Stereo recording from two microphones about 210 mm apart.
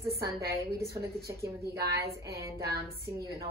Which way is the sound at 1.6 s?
50° right (ahead or behind).